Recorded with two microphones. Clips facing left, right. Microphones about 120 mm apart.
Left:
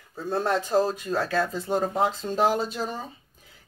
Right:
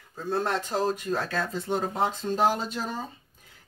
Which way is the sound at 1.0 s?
10° left (ahead or behind).